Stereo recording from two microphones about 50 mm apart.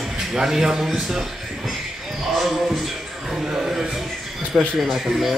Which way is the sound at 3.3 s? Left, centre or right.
Centre.